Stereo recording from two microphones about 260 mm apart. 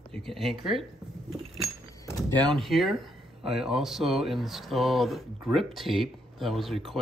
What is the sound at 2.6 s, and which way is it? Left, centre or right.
Speech, centre.